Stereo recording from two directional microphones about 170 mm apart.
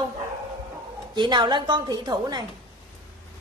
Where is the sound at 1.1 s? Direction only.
25° right (ahead or behind).